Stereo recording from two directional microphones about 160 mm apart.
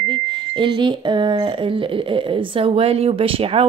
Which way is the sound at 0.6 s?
30° right (ahead or behind).